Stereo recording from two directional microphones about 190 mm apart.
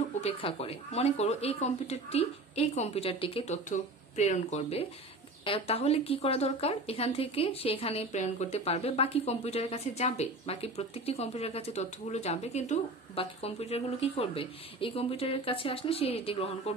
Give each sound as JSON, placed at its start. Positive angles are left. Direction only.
{"t": 0.2, "sound": "speech", "side_deg": 30}